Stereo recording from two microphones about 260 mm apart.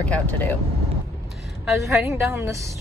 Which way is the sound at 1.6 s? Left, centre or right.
Centre.